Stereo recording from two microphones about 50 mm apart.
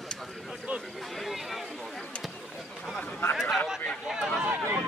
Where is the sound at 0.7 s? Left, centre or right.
Right.